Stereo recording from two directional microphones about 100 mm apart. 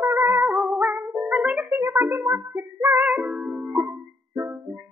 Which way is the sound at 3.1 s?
15° right (ahead or behind).